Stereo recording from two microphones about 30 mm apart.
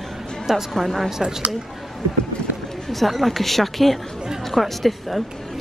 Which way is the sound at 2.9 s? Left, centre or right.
Centre.